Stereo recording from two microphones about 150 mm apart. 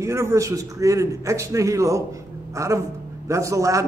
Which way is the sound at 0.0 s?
20° right (ahead or behind).